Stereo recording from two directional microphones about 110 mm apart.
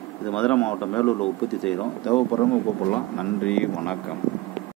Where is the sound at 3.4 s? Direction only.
10° left (ahead or behind).